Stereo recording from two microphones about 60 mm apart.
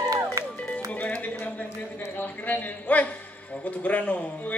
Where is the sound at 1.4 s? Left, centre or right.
Left.